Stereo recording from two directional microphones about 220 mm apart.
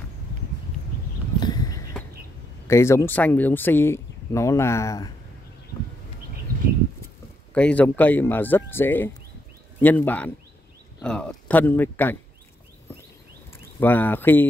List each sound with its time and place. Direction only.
1.4 s a sound: 15° left (ahead or behind)
2.7 s speech: 15° left (ahead or behind)
7.5 s speech: 5° left (ahead or behind)
13.7 s speech: 10° left (ahead or behind)